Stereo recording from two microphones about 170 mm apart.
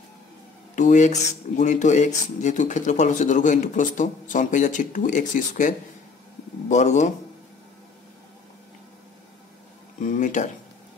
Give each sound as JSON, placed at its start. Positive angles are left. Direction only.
{"t": 0.7, "sound": "speech", "side_deg": 45}
{"t": 9.9, "sound": "speech", "side_deg": 45}